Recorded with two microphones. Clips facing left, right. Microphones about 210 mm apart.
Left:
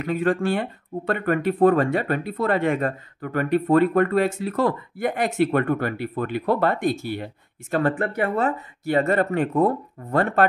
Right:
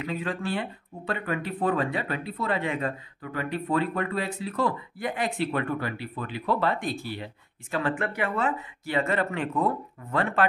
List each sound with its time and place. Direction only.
0.0 s speech: 50° left (ahead or behind)